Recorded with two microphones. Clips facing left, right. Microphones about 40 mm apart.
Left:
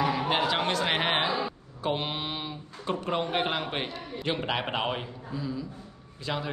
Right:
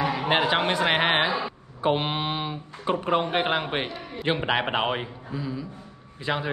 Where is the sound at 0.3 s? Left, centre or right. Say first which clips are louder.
Right 4 dB; right.